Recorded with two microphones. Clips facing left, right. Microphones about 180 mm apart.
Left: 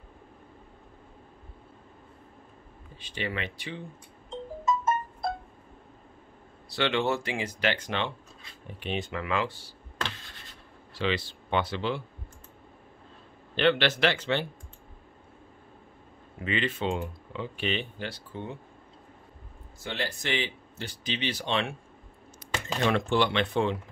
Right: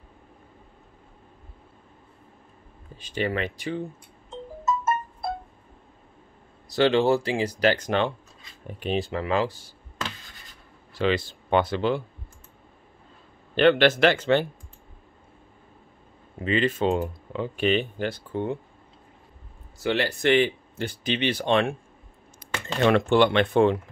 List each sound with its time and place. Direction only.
3.0 s speech: 45° right (ahead or behind)
4.3 s music: 5° right (ahead or behind)
6.7 s speech: 35° right (ahead or behind)
11.0 s speech: 50° right (ahead or behind)
13.6 s speech: 50° right (ahead or behind)
16.3 s speech: 35° right (ahead or behind); by 18.6 s 55° right (ahead or behind)
19.8 s speech: 75° right (ahead or behind); by 21.7 s 50° right (ahead or behind)
22.8 s speech: 60° right (ahead or behind)